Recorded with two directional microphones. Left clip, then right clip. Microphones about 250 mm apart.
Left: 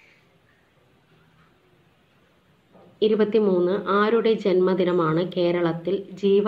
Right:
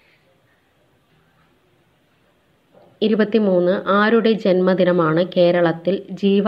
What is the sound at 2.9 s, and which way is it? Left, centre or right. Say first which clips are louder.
A woman's voice: right 2 dB; right.